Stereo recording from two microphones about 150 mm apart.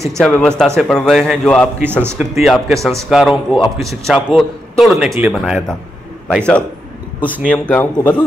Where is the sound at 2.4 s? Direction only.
Centre (ahead or behind).